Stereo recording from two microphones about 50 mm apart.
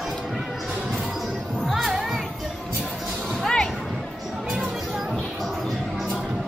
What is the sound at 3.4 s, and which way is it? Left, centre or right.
Music, centre.